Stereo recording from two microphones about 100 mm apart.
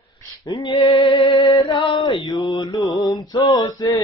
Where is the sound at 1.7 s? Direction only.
60° left (ahead or behind); by 3.9 s 40° left (ahead or behind).